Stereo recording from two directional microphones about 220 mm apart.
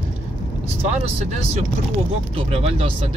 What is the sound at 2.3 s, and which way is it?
Speech, 25° right (ahead or behind).